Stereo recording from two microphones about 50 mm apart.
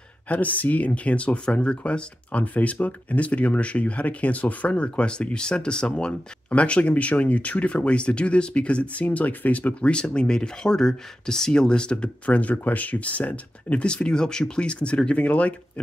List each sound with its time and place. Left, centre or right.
0.3 s speech: left
9.8 s speech: centre